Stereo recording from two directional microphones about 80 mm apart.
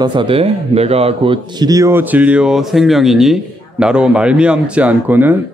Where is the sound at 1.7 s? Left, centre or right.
Right.